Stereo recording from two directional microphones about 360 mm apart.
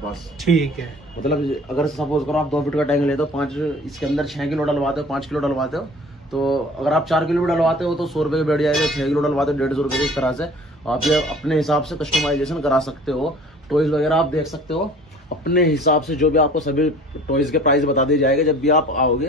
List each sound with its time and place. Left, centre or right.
0.4 s speech: centre
15.4 s speech: left